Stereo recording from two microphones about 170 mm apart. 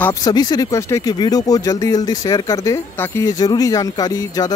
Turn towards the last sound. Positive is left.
turn(degrees=20)  # may be behind; listen again after turning